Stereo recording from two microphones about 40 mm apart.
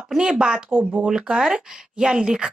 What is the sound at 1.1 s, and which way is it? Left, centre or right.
Speech, centre.